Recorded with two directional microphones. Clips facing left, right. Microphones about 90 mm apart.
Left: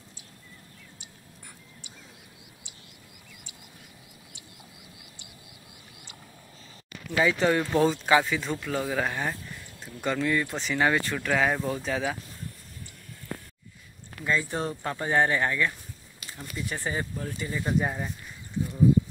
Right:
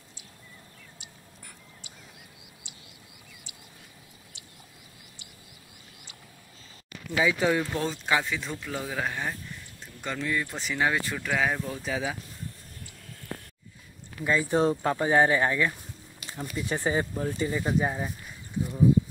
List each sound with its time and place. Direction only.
7.1 s speech: centre (ahead or behind)
14.2 s speech: 15° right (ahead or behind)
17.6 s speech: 5° right (ahead or behind)